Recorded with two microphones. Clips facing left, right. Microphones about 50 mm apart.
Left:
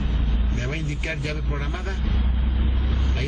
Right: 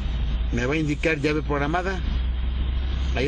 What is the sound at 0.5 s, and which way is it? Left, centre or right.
A man's voice, right.